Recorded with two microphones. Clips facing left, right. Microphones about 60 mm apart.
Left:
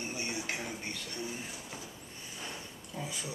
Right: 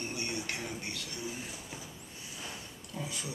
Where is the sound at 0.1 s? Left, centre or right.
Centre.